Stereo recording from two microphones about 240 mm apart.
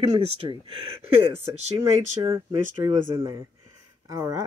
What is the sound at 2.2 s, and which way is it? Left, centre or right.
Speech, centre.